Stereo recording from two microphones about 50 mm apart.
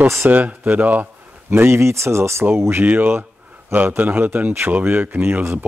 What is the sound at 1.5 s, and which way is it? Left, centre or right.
Speech, right.